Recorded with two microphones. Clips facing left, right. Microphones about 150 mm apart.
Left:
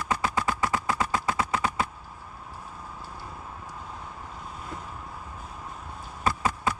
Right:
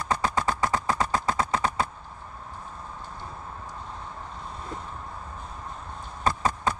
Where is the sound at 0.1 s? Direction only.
40° right (ahead or behind).